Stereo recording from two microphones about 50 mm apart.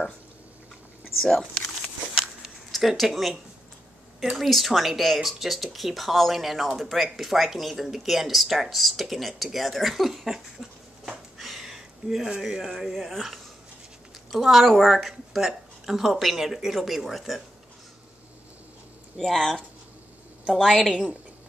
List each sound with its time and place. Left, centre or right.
1.2 s speech: centre
2.7 s speech: centre
4.4 s speech: centre
19.2 s speech: centre
20.9 s a woman's voice: right